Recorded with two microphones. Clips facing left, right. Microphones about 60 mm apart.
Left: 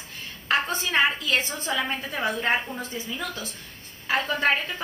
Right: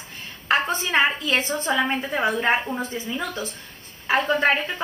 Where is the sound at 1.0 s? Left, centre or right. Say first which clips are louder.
Right 2 dB; right.